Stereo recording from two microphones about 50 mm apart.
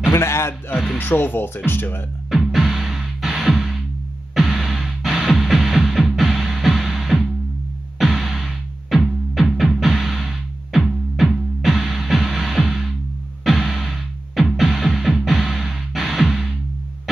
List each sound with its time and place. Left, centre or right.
0.0 s speech: left
0.9 s speech: left
2.3 s music: centre